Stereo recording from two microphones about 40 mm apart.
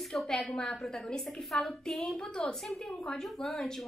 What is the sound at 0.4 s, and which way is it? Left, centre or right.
A woman's voice, left.